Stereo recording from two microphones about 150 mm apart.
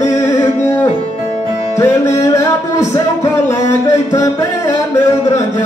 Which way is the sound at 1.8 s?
20° left (ahead or behind).